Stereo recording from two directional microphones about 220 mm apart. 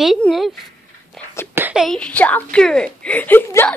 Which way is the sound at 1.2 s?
5° left (ahead or behind).